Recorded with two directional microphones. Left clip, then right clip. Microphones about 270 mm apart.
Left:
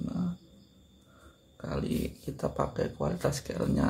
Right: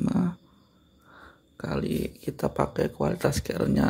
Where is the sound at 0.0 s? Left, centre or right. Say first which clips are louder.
Right 9 dB; right.